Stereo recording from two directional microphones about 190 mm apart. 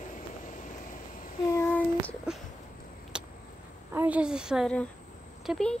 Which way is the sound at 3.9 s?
10° right (ahead or behind).